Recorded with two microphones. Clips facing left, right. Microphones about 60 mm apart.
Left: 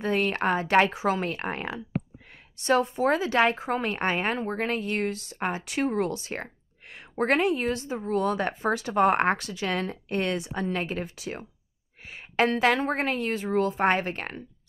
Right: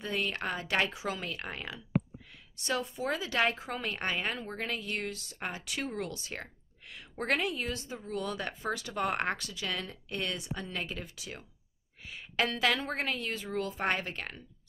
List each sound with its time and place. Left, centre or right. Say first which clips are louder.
0.0 s speech: left 9 dB; left